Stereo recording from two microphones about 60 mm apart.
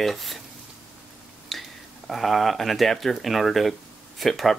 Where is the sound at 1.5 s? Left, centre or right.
Centre.